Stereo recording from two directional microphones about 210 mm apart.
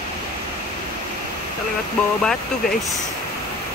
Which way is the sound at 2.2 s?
Centre (ahead or behind).